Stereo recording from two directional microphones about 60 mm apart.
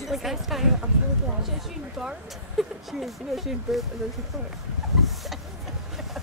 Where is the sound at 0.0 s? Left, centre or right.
Centre.